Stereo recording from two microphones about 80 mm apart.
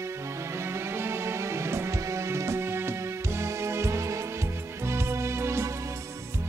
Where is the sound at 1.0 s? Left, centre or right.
Right.